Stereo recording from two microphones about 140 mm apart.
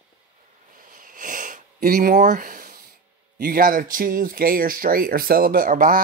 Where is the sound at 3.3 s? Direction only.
90° right.